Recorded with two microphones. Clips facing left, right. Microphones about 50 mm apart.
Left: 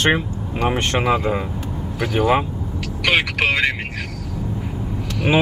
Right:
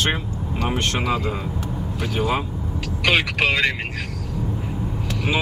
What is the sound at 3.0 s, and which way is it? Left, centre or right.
Speech, centre.